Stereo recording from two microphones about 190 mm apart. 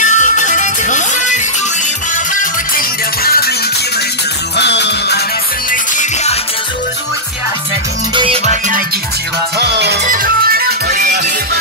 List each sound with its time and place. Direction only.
0.0 s music: 40° left (ahead or behind)
3.3 s music: 55° left (ahead or behind)
4.6 s music: 65° left (ahead or behind)
5.7 s music: 40° left (ahead or behind)
8.1 s music: 25° right (ahead or behind)
9.6 s music: 60° right (ahead or behind)
10.0 s music: 50° right (ahead or behind)